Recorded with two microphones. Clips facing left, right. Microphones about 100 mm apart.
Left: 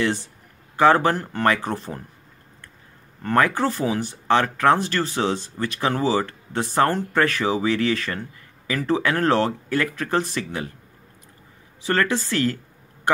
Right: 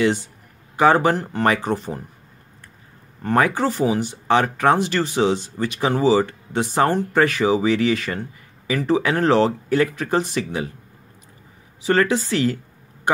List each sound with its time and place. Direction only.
0.7 s speech: 15° right (ahead or behind)
3.2 s speech: 20° right (ahead or behind)
11.8 s speech: 15° right (ahead or behind)